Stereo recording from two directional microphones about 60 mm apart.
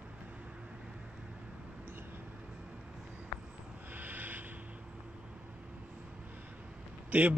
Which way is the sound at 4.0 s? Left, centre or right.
Right.